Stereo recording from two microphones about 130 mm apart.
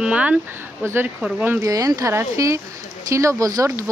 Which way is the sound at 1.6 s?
25° right (ahead or behind).